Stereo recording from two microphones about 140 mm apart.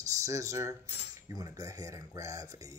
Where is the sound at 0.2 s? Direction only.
20° right (ahead or behind).